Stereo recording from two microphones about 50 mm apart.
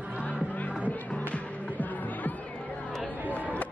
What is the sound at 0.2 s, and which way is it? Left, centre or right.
Music, left.